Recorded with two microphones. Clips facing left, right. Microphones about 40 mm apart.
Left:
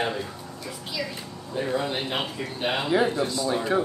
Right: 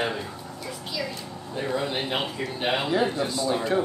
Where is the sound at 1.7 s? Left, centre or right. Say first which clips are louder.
Right 1 dB; centre.